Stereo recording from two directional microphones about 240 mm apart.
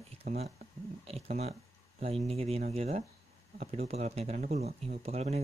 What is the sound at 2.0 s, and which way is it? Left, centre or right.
Speech, right.